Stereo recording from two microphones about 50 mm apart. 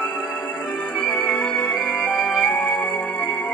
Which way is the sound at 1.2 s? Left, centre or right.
Centre.